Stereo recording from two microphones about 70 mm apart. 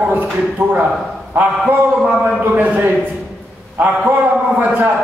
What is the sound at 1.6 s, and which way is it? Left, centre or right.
Speech, centre.